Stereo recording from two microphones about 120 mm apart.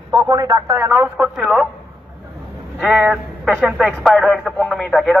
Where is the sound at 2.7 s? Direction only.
Centre (ahead or behind).